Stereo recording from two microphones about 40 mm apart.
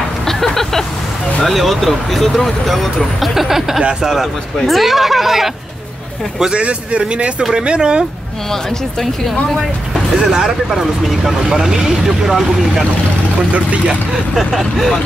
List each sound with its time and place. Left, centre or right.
0.3 s vehicle: centre
1.4 s speech: centre
6.5 s speech: right
10.1 s speech: centre
13.5 s speech: right
14.1 s speech: centre